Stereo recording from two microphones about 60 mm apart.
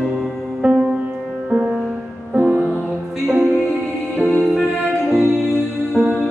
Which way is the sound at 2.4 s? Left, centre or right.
Right.